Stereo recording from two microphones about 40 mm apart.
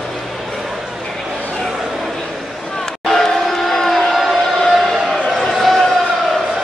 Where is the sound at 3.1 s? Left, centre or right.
Centre.